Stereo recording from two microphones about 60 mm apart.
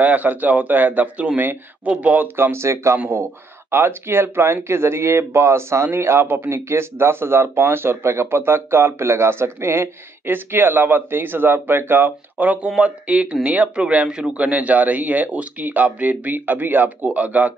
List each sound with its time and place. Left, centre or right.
0.0 s speech: right
2.3 s speech: right
12.6 s speech: centre